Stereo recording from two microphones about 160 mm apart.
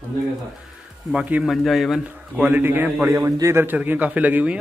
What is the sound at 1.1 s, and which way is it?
A man's voice, 5° right (ahead or behind).